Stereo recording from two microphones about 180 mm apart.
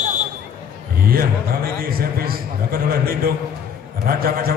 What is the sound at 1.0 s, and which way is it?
A man's voice, 55° right (ahead or behind).